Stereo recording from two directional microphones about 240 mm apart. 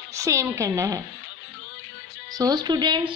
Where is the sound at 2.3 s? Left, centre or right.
Centre.